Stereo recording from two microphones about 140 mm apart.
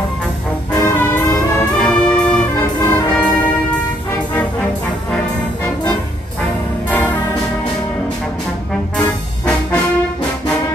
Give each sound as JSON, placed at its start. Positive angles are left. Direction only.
{"t": 0.7, "sound": "music", "side_deg": 15}
{"t": 1.8, "sound": "brass instrument", "side_deg": 10}